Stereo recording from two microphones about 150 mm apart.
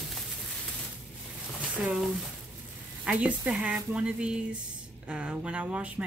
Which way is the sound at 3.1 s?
10° right (ahead or behind).